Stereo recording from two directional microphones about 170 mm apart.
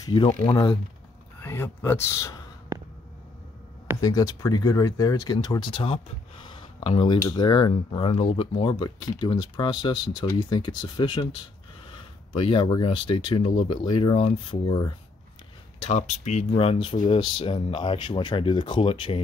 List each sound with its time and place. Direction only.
0.0 s speech: 25° left (ahead or behind)
1.4 s speech: 15° left (ahead or behind)
4.0 s speech: 20° left (ahead or behind)
15.8 s speech: 40° left (ahead or behind)